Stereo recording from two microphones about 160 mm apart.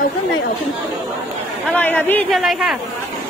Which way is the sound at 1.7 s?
10° left (ahead or behind).